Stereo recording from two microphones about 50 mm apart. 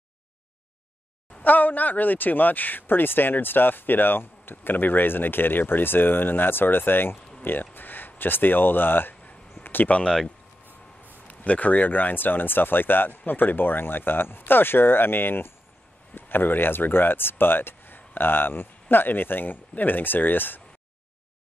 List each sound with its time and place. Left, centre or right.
1.4 s a man's voice: left
9.6 s a sound: left
10.0 s speech: centre
11.2 s speech: left